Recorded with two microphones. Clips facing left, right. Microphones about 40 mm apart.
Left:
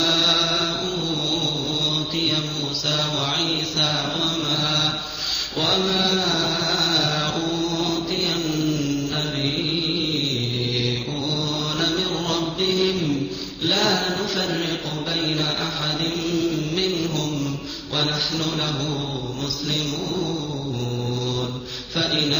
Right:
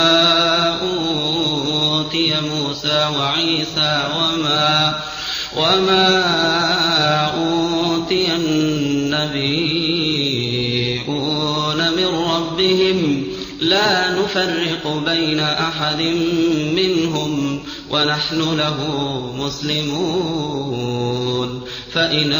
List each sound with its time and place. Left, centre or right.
0.0 s music: right
2.9 s mantra: right
10.8 s mantra: right